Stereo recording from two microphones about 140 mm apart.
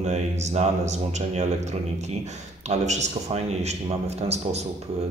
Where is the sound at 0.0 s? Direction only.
55° right (ahead or behind).